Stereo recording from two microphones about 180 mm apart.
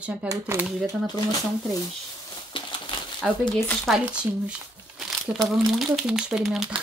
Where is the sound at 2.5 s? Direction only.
30° left (ahead or behind).